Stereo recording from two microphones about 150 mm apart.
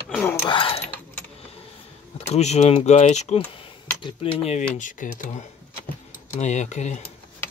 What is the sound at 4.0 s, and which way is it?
Speech, 35° left (ahead or behind).